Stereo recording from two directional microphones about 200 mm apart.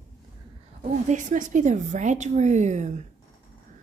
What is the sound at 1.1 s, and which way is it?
Speech, 40° right (ahead or behind).